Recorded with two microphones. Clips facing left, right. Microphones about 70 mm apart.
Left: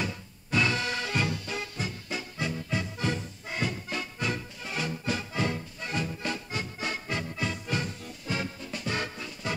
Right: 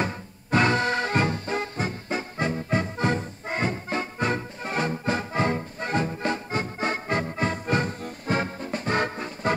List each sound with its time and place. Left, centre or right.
0.0 s music: right